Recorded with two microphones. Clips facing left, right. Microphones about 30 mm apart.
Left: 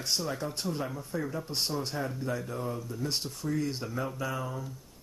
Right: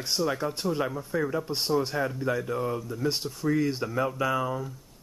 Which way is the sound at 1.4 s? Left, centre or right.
Centre.